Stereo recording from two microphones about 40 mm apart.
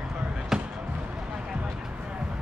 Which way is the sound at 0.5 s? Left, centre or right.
Centre.